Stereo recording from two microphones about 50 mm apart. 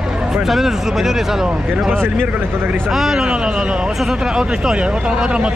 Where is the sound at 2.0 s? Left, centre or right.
Right.